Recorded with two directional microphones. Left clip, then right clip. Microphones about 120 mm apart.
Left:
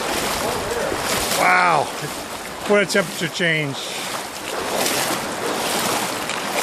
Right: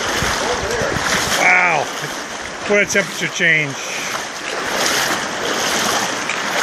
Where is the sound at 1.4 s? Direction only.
20° left (ahead or behind).